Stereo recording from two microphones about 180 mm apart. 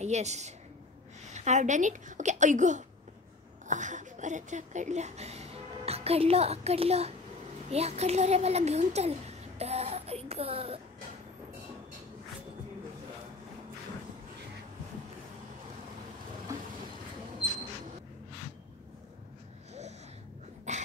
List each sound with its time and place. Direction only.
0.0 s a woman's voice: 40° right (ahead or behind)
20.7 s dog: 40° right (ahead or behind)